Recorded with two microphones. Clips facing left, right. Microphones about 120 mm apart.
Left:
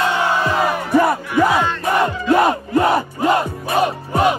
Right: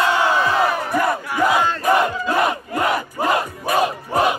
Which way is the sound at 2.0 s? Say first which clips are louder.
Left 4 dB; 30° left (ahead or behind).